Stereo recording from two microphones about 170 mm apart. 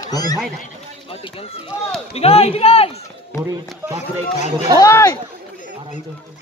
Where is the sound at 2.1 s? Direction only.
35° left (ahead or behind).